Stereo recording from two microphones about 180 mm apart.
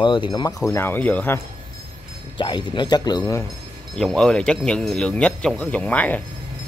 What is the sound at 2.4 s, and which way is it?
Speech, 25° left (ahead or behind).